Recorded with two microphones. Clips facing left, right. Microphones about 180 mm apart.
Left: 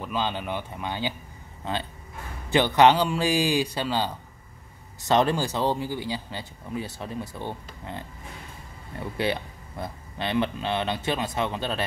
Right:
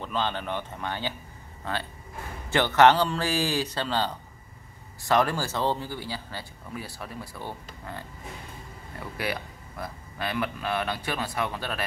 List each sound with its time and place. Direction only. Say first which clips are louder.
0.0 s speech: left 1 dB; 10° left (ahead or behind)
5.0 s speech: left 2 dB; 20° left (ahead or behind)
9.1 s speech: left 5 dB; 25° left (ahead or behind)